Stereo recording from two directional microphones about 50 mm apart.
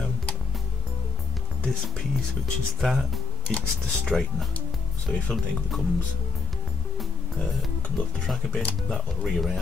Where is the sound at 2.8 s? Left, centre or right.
Centre.